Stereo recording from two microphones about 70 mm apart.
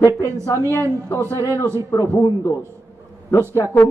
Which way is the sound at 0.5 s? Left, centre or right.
Right.